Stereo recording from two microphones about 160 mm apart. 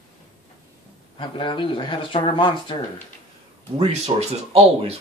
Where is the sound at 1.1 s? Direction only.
30° left (ahead or behind).